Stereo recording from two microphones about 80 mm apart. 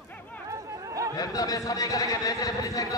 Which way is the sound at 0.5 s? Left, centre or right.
Right.